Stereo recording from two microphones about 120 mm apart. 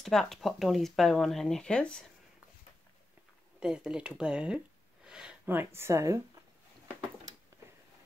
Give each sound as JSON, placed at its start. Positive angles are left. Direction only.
{"t": 0.0, "sound": "speech", "side_deg": 0}
{"t": 3.5, "sound": "speech", "side_deg": -5}
{"t": 5.0, "sound": "a sound", "side_deg": -5}
{"t": 5.4, "sound": "a woman's voice", "side_deg": -15}